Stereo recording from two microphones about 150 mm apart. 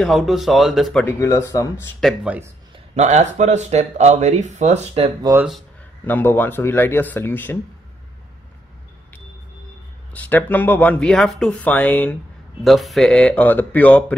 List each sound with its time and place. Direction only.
0.0 s speech: centre (ahead or behind)
1.0 s speech: 20° left (ahead or behind)
2.9 s speech: 50° right (ahead or behind)
6.0 s speech: 15° left (ahead or behind)
10.1 s speech: 10° left (ahead or behind)
12.6 s speech: centre (ahead or behind)